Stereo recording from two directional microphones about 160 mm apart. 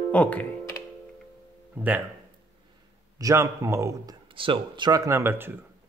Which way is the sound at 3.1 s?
20° right (ahead or behind).